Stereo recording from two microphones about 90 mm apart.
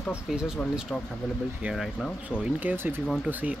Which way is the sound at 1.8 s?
5° left (ahead or behind).